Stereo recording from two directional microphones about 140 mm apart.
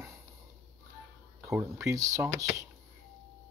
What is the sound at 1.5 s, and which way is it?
Speech, 20° right (ahead or behind).